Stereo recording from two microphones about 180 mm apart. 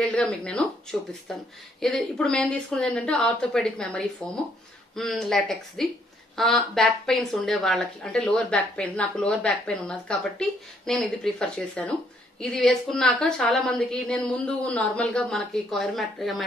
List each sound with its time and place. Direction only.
0.0 s a woman's voice: 5° left (ahead or behind)